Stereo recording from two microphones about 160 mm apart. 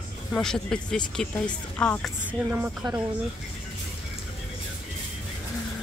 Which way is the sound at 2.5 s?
15° right (ahead or behind).